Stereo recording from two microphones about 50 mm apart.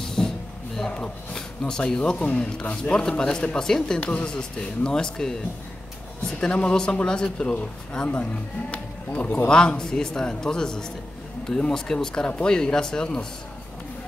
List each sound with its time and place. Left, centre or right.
0.2 s a sound: centre
0.9 s speech: centre
8.1 s speech: left
9.5 s speech: centre